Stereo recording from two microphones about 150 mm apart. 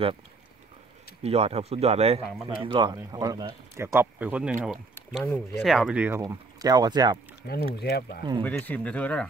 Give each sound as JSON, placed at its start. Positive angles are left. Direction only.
{"t": 1.2, "sound": "speech", "side_deg": -45}
{"t": 5.2, "sound": "speech", "side_deg": 15}
{"t": 5.6, "sound": "speech", "side_deg": 0}
{"t": 6.2, "sound": "speech", "side_deg": -25}
{"t": 7.4, "sound": "speech", "side_deg": 90}
{"t": 8.2, "sound": "speech", "side_deg": -30}
{"t": 8.5, "sound": "speech", "side_deg": 10}